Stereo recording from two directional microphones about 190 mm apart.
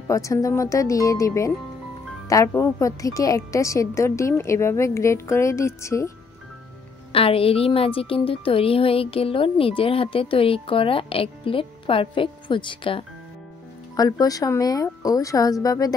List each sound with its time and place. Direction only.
0.1 s a woman's voice: 15° left (ahead or behind)
7.1 s a woman's voice: 30° left (ahead or behind)